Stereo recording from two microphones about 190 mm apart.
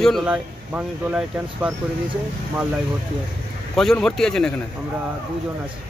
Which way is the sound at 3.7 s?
5° left (ahead or behind).